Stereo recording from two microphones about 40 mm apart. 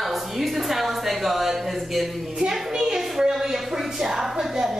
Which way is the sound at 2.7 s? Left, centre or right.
Centre.